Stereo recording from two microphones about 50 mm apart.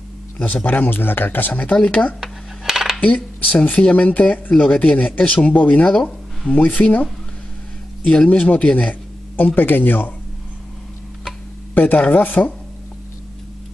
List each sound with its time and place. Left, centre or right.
0.7 s speech: left
2.6 s cutlery: centre
3.0 s speech: left
5.9 s a sound: centre
6.5 s speech: left
8.1 s speech: left
9.6 s speech: left
11.7 s speech: left